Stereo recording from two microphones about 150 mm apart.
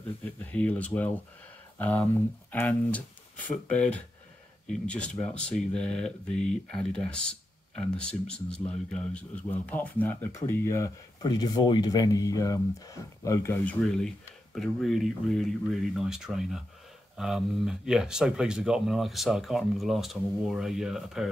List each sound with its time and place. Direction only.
0.2 s speech: 10° left (ahead or behind)
4.8 s speech: 10° left (ahead or behind)
13.8 s speech: centre (ahead or behind)